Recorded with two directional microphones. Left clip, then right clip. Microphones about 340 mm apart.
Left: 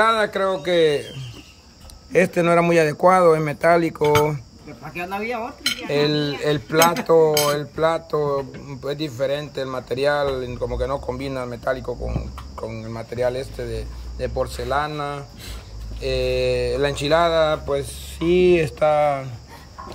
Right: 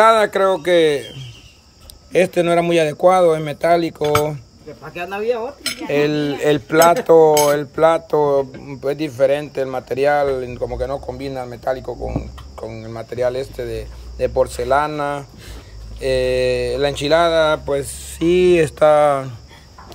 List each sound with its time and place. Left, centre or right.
0.0 s cutlery: centre
2.1 s speech: centre
5.9 s speech: centre
6.4 s cutlery: centre